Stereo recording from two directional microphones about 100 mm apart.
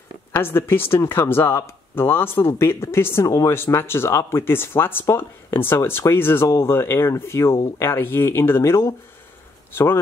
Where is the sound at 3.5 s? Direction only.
25° left (ahead or behind).